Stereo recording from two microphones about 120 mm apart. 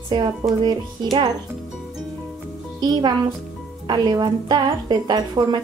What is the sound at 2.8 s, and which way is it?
A child's voice, 35° right (ahead or behind).